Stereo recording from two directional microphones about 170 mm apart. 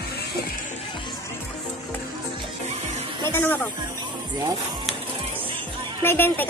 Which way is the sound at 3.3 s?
10° left (ahead or behind).